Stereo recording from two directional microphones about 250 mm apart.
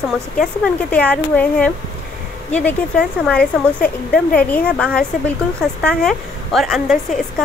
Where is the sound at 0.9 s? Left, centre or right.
Centre.